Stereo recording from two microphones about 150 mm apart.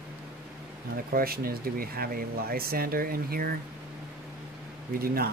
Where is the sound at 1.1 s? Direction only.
80° right.